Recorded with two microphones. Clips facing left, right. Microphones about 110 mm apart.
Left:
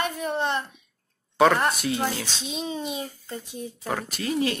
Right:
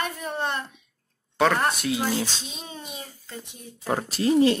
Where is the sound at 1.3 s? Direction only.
Centre (ahead or behind).